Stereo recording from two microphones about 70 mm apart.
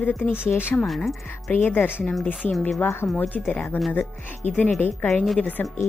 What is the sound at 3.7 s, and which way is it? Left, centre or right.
Speech, left.